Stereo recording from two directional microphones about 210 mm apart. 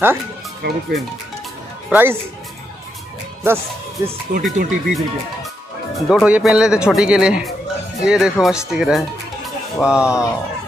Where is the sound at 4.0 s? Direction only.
15° right (ahead or behind).